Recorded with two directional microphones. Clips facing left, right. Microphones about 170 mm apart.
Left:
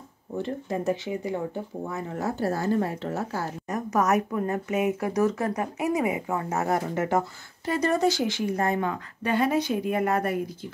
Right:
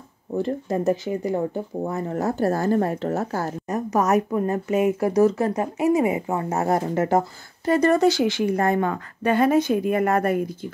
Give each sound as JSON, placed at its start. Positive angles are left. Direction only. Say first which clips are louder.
{"t": 0.4, "sound": "speech", "louder": "right 5 dB", "side_deg": -40}
{"t": 3.6, "sound": "speech", "louder": "right 2 dB", "side_deg": -30}
{"t": 8.0, "sound": "speech", "louder": "right 5 dB", "side_deg": -70}